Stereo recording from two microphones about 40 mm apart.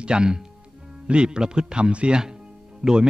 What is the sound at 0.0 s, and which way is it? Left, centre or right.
Speech, right.